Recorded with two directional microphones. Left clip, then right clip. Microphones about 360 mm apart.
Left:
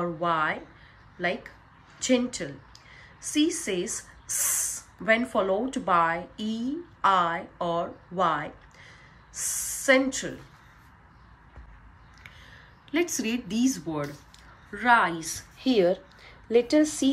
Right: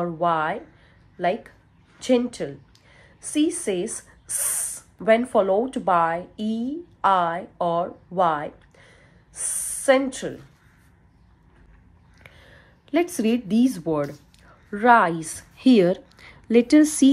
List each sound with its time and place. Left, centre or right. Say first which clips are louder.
0.0 s a woman's voice: right 4 dB; centre
12.2 s a woman's voice: even; centre